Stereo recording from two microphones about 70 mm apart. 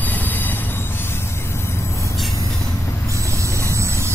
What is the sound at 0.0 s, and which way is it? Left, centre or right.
Train wheels squealing, left.